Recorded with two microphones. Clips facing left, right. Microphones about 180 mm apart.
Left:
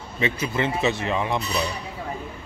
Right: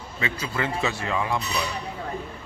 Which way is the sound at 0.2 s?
20° left (ahead or behind).